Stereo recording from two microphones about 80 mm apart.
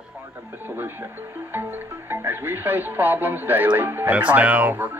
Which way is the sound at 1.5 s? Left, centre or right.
Right.